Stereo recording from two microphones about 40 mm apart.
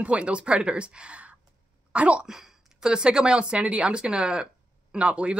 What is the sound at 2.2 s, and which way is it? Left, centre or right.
Speech, centre.